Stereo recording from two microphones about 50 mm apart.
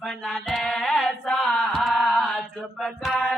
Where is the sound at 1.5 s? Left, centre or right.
Centre.